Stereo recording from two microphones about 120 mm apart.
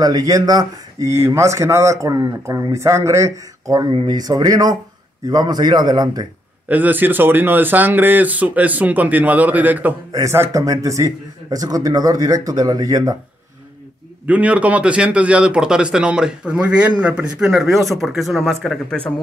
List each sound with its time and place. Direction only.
0.0 s speech: 30° right (ahead or behind)
6.7 s speech: 15° right (ahead or behind); by 13.1 s 30° right (ahead or behind)
14.2 s speech: 10° right (ahead or behind); by 19.1 s 5° left (ahead or behind)